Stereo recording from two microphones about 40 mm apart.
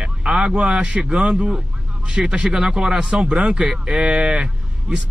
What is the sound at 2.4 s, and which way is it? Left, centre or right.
A man's voice, centre.